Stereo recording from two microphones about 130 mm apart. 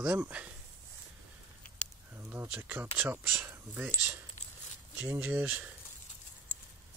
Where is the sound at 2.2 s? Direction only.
15° right (ahead or behind).